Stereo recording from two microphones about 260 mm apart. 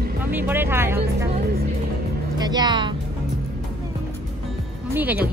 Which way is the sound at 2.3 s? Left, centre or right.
Centre.